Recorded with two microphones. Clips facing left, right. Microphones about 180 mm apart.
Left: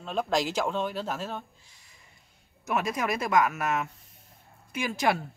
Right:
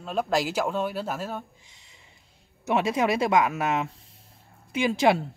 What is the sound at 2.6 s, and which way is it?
Speech, 25° right (ahead or behind).